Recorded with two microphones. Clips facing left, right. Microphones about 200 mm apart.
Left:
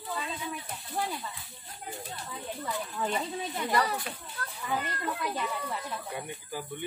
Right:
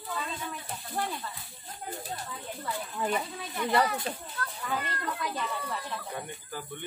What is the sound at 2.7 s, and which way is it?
Speech, 10° right (ahead or behind).